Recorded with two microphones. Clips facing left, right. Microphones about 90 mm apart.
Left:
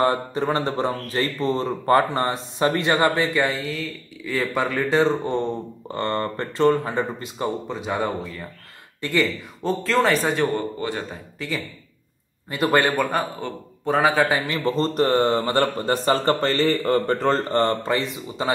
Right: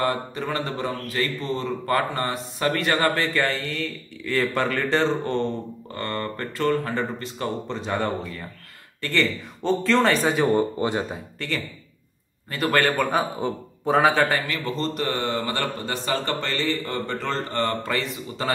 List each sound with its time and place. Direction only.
0.0 s a man's voice: 30° left (ahead or behind)
5.9 s a man's voice: 25° left (ahead or behind)
7.7 s a man's voice: 5° left (ahead or behind)
10.5 s speech: 20° right (ahead or behind)
11.3 s a man's voice: 5° left (ahead or behind)
12.4 s a man's voice: 20° left (ahead or behind)
12.9 s a man's voice: centre (ahead or behind)
14.6 s a man's voice: 40° left (ahead or behind); by 18.5 s 20° left (ahead or behind)